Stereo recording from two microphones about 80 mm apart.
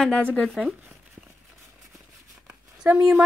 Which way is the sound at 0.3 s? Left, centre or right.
Centre.